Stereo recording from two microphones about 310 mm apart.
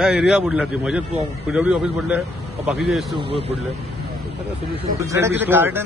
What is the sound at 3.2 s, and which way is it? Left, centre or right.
Speech, centre.